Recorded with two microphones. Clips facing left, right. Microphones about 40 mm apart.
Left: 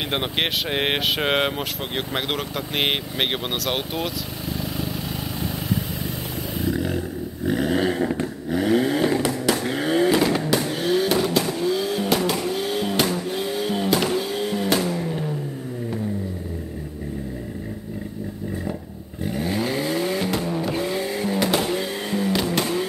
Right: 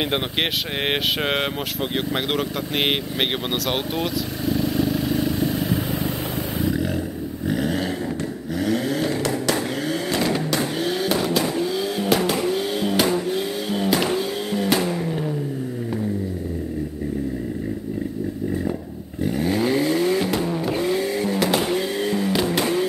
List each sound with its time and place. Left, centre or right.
0.1 s speech: centre
6.7 s roaring cats: centre
7.4 s vehicle: centre
8.0 s vehicle: left
10.2 s vehicle: centre
19.2 s vehicle: centre